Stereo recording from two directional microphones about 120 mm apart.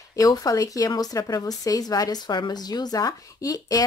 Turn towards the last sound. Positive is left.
turn(degrees=30)  # may be behind; listen again after turning